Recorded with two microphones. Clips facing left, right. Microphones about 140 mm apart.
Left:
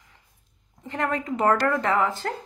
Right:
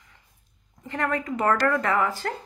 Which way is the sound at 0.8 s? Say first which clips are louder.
Even; 25° left (ahead or behind).